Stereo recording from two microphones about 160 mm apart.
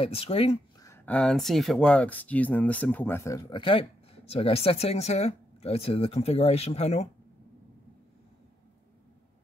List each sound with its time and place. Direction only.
0.0 s speech: 35° left (ahead or behind)
0.7 s a sound: 20° left (ahead or behind)
1.0 s speech: 5° left (ahead or behind); by 7.1 s 45° left (ahead or behind)